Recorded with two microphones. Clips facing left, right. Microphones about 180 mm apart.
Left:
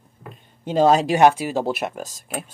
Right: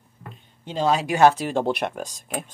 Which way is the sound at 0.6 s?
45° left (ahead or behind).